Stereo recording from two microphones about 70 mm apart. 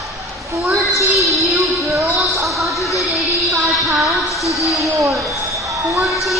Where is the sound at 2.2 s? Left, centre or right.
Centre.